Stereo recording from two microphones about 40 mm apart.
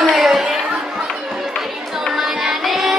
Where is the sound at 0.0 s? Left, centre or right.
Centre.